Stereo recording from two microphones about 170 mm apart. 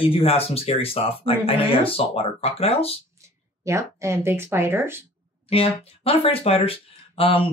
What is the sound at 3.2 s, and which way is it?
Speech, 15° right (ahead or behind).